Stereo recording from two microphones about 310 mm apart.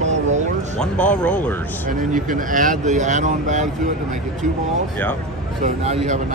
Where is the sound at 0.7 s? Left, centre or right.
Centre.